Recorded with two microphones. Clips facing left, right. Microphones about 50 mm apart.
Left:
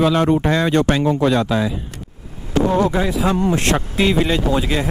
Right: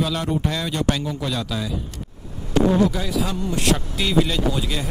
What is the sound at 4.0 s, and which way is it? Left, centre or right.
Speech, left.